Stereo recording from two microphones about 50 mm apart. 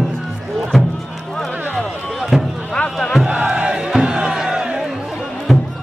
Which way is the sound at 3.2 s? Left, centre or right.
Right.